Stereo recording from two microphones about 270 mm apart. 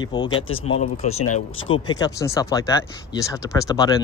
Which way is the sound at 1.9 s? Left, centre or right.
Centre.